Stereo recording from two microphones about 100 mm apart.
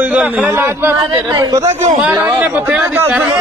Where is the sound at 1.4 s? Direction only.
40° right (ahead or behind).